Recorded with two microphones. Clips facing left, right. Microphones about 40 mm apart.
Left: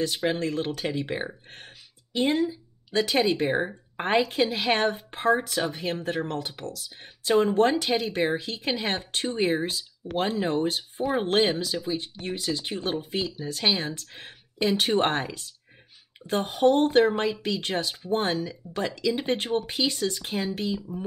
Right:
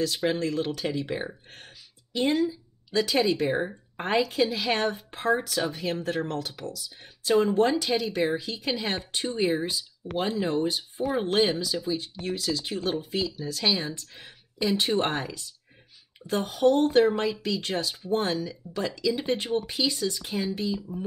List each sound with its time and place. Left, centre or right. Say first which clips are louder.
0.4 s speech: even; left
6.6 s speech: even; left